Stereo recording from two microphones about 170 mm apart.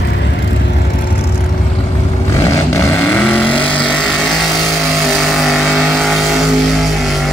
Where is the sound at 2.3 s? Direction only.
15° left (ahead or behind).